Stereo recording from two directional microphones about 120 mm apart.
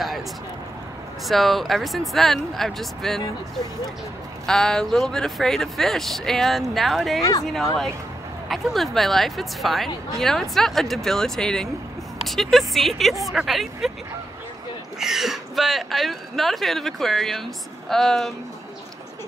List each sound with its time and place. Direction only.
1.2 s speech: centre (ahead or behind)
4.5 s speech: 5° left (ahead or behind)
7.2 s speech: 25° left (ahead or behind)
8.5 s speech: centre (ahead or behind)
15.0 s speech: 5° right (ahead or behind)